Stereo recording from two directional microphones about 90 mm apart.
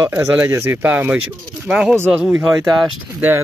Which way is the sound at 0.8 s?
15° right (ahead or behind).